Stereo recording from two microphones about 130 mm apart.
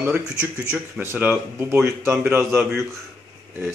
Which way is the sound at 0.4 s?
10° right (ahead or behind).